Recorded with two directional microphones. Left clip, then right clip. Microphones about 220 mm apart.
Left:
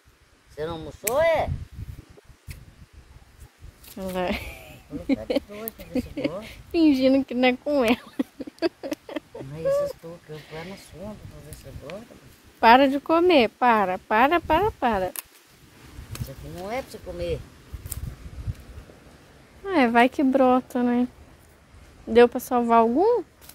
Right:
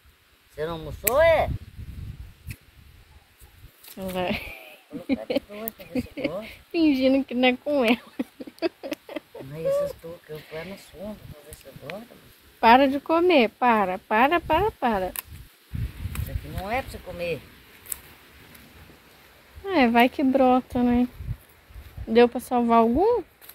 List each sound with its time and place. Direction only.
0.6 s speech: 25° left (ahead or behind)
4.0 s speech: 15° left (ahead or behind)
5.5 s speech: 50° left (ahead or behind)
5.8 s speech: 15° left (ahead or behind)
10.3 s speech: 10° left (ahead or behind)
12.5 s speech: 10° left (ahead or behind)
16.6 s speech: 50° left (ahead or behind)
19.6 s speech: 15° left (ahead or behind)
22.1 s speech: 15° left (ahead or behind)